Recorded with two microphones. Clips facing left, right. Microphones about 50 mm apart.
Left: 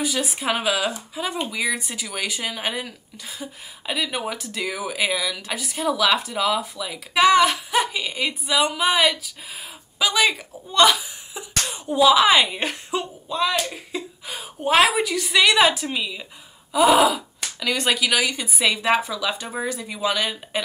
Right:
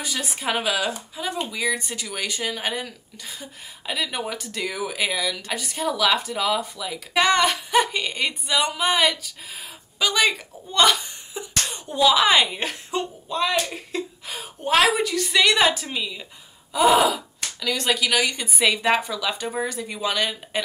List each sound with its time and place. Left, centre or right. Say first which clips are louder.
0.0 s speech: left 3 dB; centre
17.6 s speech: left 1 dB; centre
18.0 s speech: left 1 dB; centre